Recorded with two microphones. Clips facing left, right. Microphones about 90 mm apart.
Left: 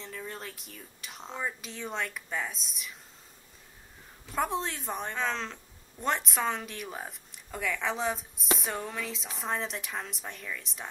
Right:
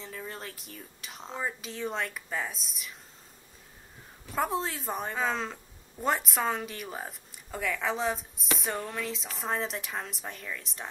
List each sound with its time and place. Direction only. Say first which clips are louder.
0.0 s a woman's voice: even; centre (ahead or behind)
4.3 s a woman's voice: right 1 dB; centre (ahead or behind)